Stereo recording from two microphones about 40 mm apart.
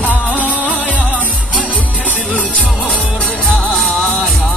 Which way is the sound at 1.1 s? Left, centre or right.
Right.